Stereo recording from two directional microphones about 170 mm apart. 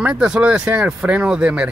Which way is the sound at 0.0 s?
5° right (ahead or behind).